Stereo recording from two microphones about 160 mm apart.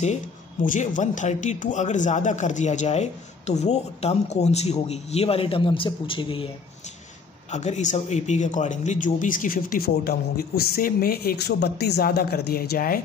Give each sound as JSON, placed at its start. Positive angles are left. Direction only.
{"t": 0.0, "sound": "speech", "side_deg": 50}
{"t": 7.5, "sound": "speech", "side_deg": 45}